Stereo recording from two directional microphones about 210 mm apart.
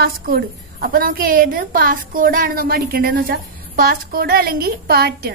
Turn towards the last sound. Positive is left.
turn(degrees=-50)  # may be behind; listen again after turning